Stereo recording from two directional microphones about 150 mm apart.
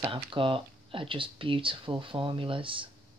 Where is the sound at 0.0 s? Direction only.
35° right (ahead or behind).